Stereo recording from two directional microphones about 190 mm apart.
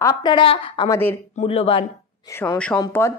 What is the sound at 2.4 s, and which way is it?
Speech, 10° left (ahead or behind).